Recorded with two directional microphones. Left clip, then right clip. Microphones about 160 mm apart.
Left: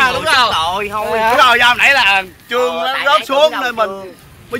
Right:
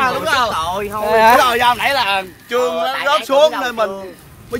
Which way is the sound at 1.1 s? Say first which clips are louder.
Right 5 dB; 90° right.